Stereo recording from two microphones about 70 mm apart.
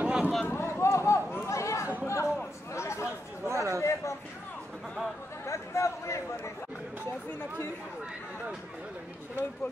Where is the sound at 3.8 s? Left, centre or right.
Left.